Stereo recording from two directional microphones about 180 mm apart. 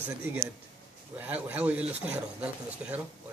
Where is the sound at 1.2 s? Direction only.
10° right (ahead or behind).